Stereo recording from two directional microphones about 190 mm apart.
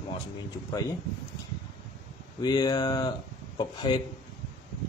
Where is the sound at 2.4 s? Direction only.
20° left (ahead or behind).